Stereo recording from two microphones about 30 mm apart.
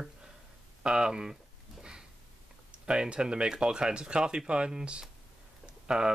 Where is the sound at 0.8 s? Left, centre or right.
Right.